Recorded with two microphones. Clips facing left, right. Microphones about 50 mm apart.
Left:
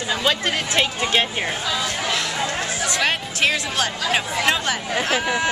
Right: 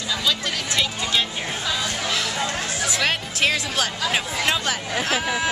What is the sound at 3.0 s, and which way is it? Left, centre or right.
Speech, centre.